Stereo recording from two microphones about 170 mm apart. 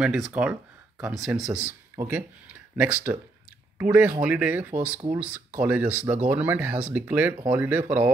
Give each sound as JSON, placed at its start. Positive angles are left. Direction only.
{"t": 0.0, "sound": "speech", "side_deg": -5}